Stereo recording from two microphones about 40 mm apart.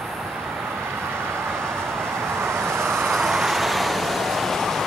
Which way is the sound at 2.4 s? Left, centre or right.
Right.